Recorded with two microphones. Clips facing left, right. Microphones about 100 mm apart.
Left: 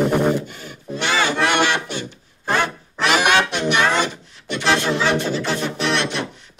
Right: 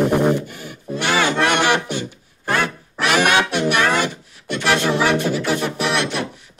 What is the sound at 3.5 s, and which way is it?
Music, 10° right (ahead or behind).